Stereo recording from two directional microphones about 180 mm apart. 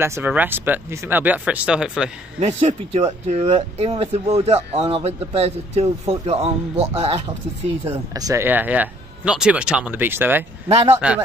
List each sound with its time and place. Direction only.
0.0 s speech: 10° right (ahead or behind)
2.4 s a man's voice: 35° right (ahead or behind)
8.1 s speech: 20° right (ahead or behind)